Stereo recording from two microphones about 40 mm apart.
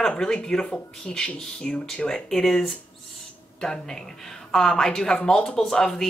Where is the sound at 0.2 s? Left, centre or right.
Centre.